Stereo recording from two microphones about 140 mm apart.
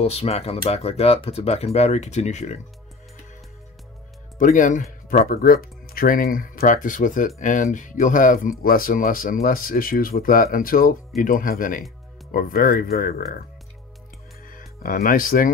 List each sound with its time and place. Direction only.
0.0 s speech: 45° left (ahead or behind)
4.4 s speech: 65° left (ahead or behind)
5.1 s speech: 90° left
14.5 s speech: 90° left